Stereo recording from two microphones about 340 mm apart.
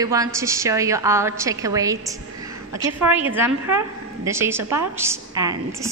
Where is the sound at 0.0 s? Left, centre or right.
Centre.